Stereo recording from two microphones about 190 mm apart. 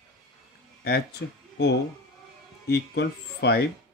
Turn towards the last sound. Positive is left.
turn(degrees=60)  # may be behind; listen again after turning